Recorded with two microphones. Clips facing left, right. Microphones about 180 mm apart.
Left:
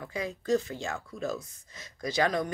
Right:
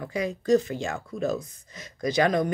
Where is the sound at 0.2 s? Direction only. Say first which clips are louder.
Right 6 dB; 20° right (ahead or behind).